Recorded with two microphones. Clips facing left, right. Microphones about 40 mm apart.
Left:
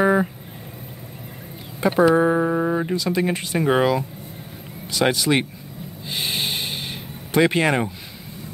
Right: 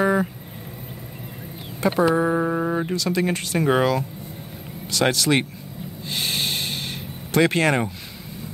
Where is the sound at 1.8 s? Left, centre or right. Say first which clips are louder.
Left 1 dB; centre.